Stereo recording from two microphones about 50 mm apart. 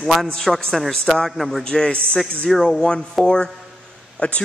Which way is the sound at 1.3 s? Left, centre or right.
Centre.